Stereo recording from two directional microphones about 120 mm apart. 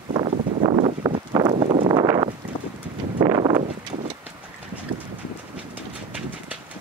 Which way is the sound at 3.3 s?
35° right (ahead or behind).